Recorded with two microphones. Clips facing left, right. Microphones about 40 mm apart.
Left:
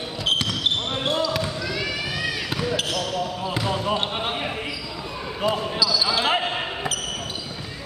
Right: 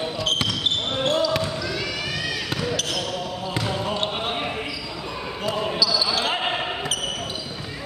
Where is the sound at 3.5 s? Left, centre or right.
Centre.